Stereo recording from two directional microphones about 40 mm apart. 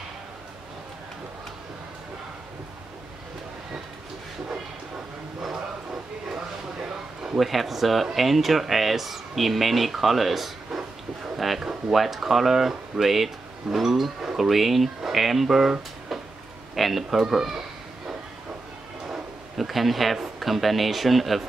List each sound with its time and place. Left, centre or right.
6.3 s a sound: centre
7.3 s speech: centre
16.7 s speech: centre
19.5 s speech: centre